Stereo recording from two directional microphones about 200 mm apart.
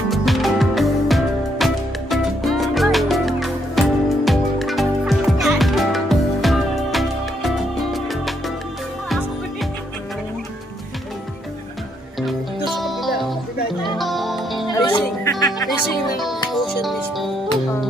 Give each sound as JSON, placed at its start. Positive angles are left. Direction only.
{"t": 0.1, "sound": "music", "side_deg": 0}
{"t": 12.8, "sound": "music", "side_deg": 0}
{"t": 14.9, "sound": "music", "side_deg": 20}